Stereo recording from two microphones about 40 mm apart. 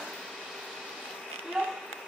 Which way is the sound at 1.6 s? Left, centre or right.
Centre.